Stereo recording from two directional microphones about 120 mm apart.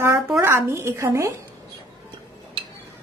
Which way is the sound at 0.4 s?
20° right (ahead or behind).